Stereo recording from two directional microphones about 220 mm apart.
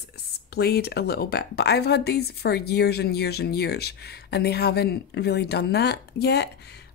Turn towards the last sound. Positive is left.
turn(degrees=50)  # may be behind; listen again after turning